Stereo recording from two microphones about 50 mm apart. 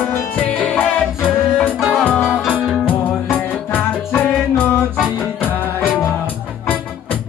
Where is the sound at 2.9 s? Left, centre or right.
Left.